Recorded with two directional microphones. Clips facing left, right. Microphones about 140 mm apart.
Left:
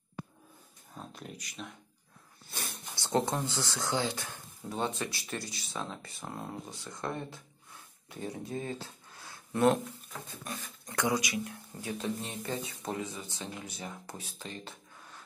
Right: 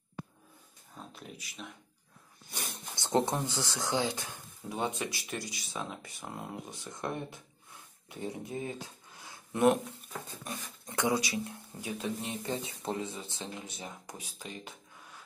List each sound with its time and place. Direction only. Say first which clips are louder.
1.1 s speech: left 2 dB; 5° right (ahead or behind)
2.5 s a sound: even; 20° right (ahead or behind)
3.4 s speech: even; 15° right (ahead or behind)
11.7 s speech: left 1 dB; 10° right (ahead or behind)